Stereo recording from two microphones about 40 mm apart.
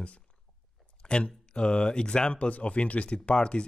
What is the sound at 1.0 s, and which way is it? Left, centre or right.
Speech, left.